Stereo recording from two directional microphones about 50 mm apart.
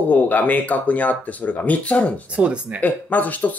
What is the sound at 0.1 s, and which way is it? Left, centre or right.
Speech, left.